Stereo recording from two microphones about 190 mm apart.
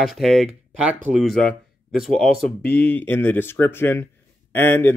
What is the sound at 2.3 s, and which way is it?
Speech, 55° left (ahead or behind).